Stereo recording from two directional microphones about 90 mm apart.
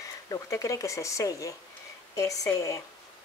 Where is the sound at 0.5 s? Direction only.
35° left (ahead or behind).